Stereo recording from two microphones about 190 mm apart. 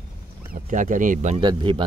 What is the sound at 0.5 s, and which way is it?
Speech, 45° right (ahead or behind).